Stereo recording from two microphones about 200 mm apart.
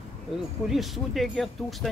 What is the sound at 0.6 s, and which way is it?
Speech, centre (ahead or behind).